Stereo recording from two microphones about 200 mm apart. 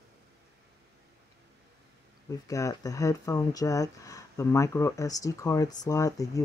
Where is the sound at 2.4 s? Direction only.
15° left (ahead or behind).